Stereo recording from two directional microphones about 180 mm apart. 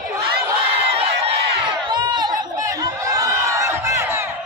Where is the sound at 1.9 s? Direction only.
25° right (ahead or behind).